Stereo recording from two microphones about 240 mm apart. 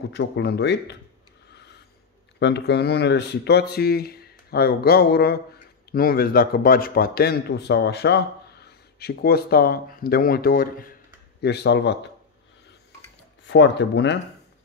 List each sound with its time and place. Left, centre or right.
0.1 s speech: left
1.5 s a sound: left
2.3 s a man's voice: left
13.5 s speech: left